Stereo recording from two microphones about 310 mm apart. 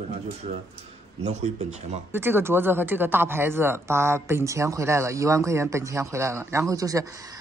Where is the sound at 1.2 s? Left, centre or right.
Right.